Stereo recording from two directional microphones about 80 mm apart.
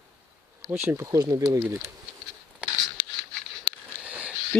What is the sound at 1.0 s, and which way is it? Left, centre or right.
Speech, right.